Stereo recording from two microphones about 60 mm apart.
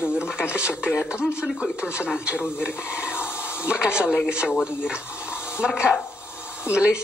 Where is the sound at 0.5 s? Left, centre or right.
Right.